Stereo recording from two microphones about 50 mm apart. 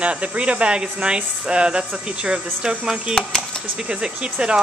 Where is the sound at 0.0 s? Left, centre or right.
Right.